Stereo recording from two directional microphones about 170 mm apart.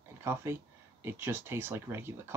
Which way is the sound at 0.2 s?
15° right (ahead or behind).